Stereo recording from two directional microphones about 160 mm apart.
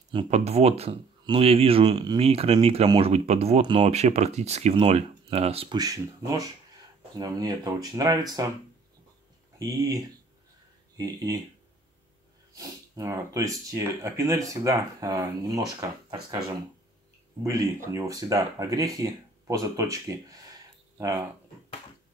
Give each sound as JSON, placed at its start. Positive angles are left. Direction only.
{"t": 0.1, "sound": "speech", "side_deg": -35}
{"t": 5.8, "sound": "speech", "side_deg": -20}
{"t": 9.6, "sound": "speech", "side_deg": -25}
{"t": 12.5, "sound": "speech", "side_deg": -20}
{"t": 17.4, "sound": "speech", "side_deg": -20}